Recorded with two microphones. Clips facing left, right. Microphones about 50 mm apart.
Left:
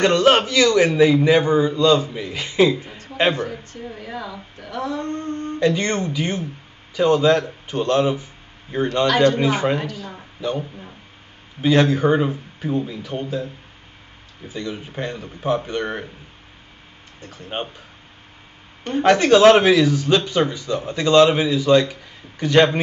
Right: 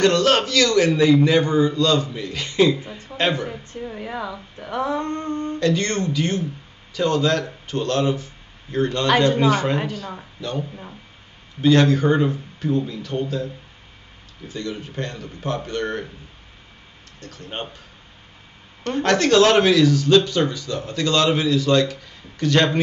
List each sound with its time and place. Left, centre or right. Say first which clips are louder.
0.0 s speech: left 2 dB; centre
4.0 s speech: right 2 dB; right
5.6 s speech: left 2 dB; centre
11.6 s speech: even; centre
14.5 s speech: even; centre
17.2 s speech: left 3 dB; centre
18.9 s speech: left 3 dB; centre